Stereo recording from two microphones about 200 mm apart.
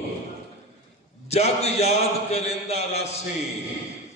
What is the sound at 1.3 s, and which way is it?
Speech, 30° left (ahead or behind).